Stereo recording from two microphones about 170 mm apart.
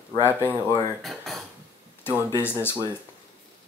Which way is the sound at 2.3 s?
15° left (ahead or behind).